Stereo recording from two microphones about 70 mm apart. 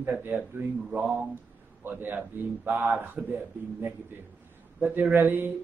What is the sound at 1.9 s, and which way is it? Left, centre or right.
Speech, right.